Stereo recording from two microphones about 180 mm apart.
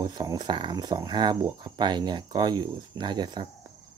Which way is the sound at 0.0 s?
20° right (ahead or behind).